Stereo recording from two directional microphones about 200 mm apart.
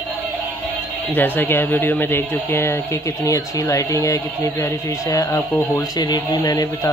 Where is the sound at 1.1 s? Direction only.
10° left (ahead or behind).